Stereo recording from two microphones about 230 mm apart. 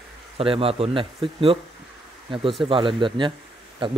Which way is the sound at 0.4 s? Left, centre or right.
Right.